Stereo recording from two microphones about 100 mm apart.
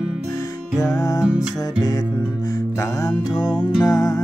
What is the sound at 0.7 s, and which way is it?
Music, 40° left (ahead or behind).